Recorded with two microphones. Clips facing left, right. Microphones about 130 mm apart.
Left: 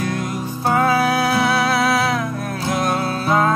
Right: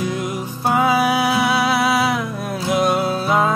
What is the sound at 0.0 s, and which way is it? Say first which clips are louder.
Music: even; 20° right (ahead or behind).